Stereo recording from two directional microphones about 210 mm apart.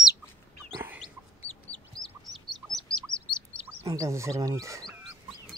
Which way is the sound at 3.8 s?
15° right (ahead or behind).